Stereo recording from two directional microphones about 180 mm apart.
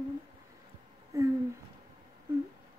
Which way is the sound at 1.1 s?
20° right (ahead or behind).